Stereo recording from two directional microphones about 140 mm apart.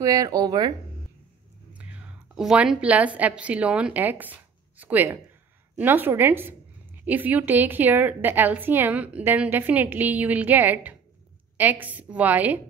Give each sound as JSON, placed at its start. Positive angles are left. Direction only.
{"t": 0.0, "sound": "speech", "side_deg": -25}
{"t": 1.7, "sound": "a woman's voice", "side_deg": -10}